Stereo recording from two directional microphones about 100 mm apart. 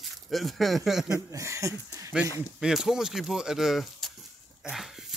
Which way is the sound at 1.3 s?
30° right (ahead or behind).